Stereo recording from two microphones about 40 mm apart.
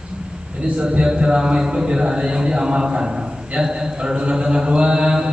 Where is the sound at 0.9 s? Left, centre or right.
Right.